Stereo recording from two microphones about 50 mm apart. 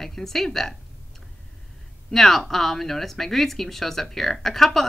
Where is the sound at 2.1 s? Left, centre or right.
Centre.